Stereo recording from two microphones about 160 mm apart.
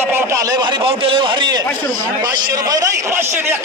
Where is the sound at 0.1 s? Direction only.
15° right (ahead or behind).